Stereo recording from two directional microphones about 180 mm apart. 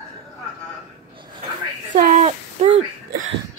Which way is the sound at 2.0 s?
40° right (ahead or behind).